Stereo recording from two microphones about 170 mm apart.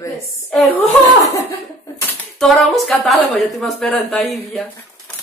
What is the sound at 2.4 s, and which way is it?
A woman's voice, centre (ahead or behind).